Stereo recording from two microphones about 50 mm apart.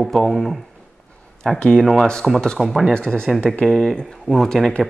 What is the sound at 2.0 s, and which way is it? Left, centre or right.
Speech, centre.